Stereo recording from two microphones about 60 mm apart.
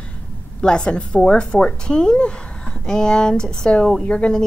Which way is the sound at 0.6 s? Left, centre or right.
Centre.